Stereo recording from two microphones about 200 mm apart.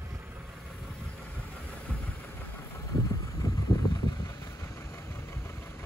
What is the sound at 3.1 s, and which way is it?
Vehicle, 15° left (ahead or behind).